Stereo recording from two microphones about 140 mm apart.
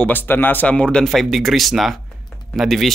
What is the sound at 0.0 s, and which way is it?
Speech, 15° left (ahead or behind).